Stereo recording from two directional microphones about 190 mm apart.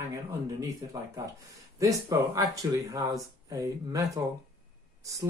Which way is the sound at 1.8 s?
20° right (ahead or behind).